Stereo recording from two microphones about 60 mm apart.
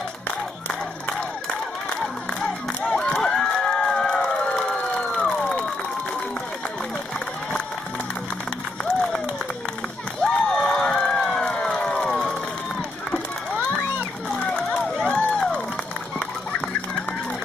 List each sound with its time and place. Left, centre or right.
2.9 s crowd: centre
10.2 s crowd: centre
11.1 s run: centre
13.1 s run: left
14.7 s run: centre
15.1 s a sound: centre